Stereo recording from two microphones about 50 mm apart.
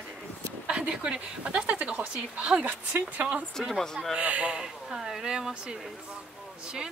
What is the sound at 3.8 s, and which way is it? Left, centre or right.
Speech, centre.